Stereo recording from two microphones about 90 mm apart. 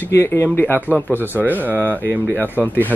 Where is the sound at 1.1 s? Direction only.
20° right (ahead or behind).